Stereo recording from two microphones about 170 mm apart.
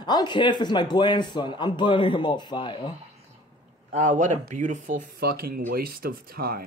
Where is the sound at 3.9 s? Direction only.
45° right (ahead or behind).